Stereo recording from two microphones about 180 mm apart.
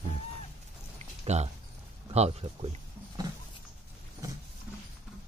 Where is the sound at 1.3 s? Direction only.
40° right (ahead or behind).